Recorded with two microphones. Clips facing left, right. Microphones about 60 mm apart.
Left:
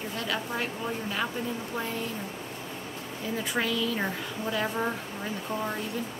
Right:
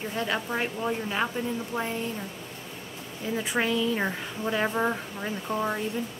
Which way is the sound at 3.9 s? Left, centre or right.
Centre.